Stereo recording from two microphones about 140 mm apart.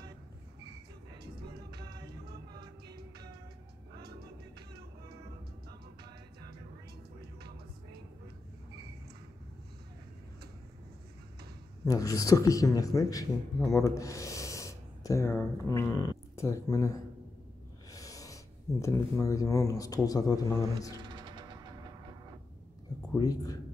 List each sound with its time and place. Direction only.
11.8 s speech: 25° left (ahead or behind)
21.0 s music: 30° right (ahead or behind)
23.1 s a man's voice: 25° left (ahead or behind)